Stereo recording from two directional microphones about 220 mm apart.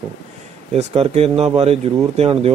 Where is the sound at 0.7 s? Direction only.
30° right (ahead or behind).